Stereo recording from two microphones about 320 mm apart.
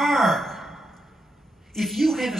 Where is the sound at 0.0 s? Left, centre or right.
Centre.